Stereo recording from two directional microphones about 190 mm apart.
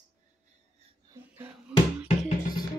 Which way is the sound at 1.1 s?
10° right (ahead or behind).